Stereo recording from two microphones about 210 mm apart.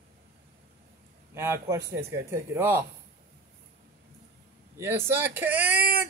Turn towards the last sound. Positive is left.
turn(degrees=-5)  # may be behind; listen again after turning